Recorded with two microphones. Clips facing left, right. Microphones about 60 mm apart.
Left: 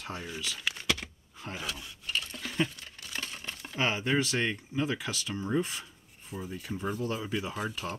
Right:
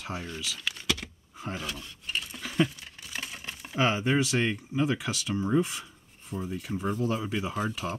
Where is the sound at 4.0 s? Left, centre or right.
Centre.